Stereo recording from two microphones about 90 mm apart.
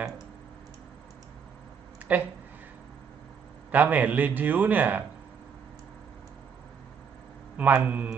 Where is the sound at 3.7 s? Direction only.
15° right (ahead or behind).